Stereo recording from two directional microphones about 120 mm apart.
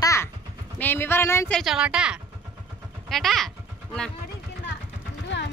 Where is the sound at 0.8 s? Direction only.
20° left (ahead or behind).